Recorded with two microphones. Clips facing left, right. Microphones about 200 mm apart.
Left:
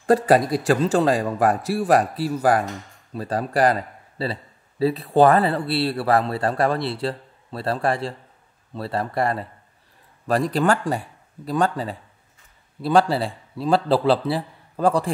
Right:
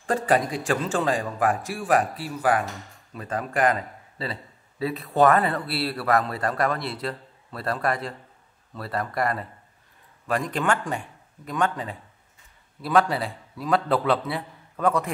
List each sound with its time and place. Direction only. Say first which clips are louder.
0.0 s a man's voice: left 6 dB; 40° left (ahead or behind)
2.6 s speech: left 3 dB; centre (ahead or behind)
3.1 s a man's voice: left 5 dB; 35° left (ahead or behind)